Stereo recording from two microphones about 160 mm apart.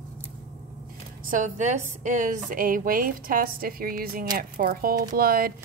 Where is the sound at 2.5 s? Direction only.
60° right (ahead or behind).